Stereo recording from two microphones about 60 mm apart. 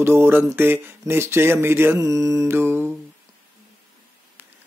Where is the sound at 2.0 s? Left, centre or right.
Right.